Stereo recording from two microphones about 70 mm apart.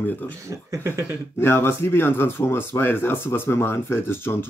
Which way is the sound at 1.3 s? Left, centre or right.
Left.